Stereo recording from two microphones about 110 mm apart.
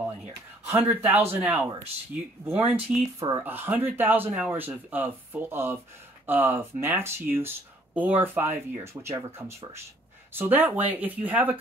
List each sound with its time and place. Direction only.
0.7 s speech: 20° right (ahead or behind)
3.2 s speech: 25° right (ahead or behind)